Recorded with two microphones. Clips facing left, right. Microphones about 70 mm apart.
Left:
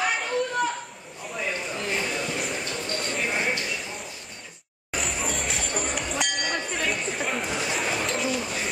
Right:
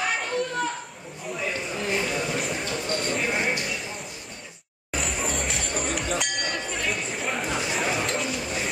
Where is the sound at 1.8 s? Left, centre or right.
Centre.